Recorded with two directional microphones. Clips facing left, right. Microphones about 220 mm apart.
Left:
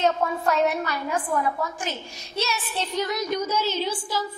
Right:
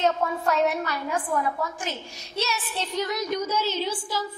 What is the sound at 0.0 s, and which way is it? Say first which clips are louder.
A woman's voice: left 1 dB; 20° left (ahead or behind).